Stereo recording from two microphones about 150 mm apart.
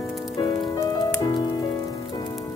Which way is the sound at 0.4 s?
30° left (ahead or behind).